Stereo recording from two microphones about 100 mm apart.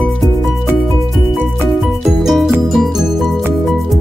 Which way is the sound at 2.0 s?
Centre (ahead or behind).